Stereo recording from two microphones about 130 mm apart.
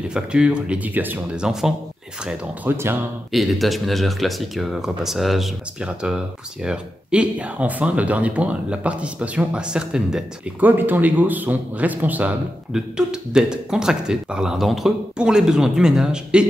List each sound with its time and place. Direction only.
0.1 s speech: 5° right (ahead or behind)
3.3 s speech: centre (ahead or behind)